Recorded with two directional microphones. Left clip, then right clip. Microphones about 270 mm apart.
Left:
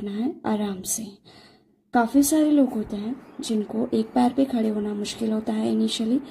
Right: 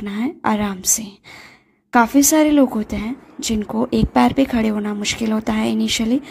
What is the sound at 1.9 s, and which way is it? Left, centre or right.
Speech, right.